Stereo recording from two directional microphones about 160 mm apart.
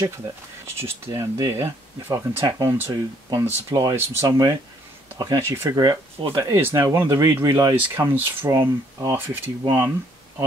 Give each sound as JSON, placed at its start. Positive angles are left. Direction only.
{"t": 0.7, "sound": "speech", "side_deg": -15}